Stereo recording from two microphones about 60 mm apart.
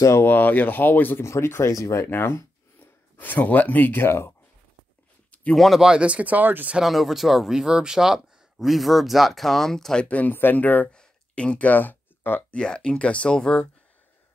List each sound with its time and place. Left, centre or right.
0.2 s speech: left
1.2 s speech: left
2.0 s speech: left
5.5 s speech: centre
5.8 s speech: centre
6.8 s speech: centre
10.0 s speech: left
10.9 s a sound: centre; by 12.4 s left
12.4 s speech: centre